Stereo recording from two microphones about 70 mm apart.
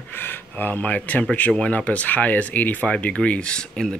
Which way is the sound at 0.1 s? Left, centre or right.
Left.